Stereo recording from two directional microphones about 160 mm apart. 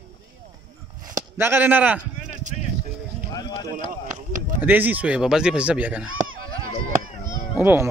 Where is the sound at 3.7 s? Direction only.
50° right (ahead or behind).